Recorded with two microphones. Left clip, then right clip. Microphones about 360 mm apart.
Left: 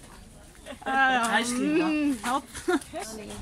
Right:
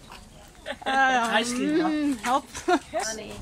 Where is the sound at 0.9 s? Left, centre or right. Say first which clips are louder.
Right 1 dB; centre.